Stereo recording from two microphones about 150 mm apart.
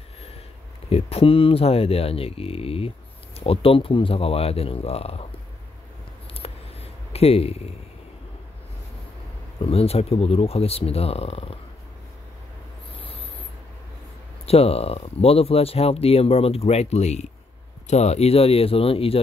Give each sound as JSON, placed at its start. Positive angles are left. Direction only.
{"t": 0.8, "sound": "speech", "side_deg": 40}
{"t": 6.3, "sound": "a sound", "side_deg": 40}
{"t": 9.6, "sound": "speech", "side_deg": 40}
{"t": 14.4, "sound": "speech", "side_deg": 40}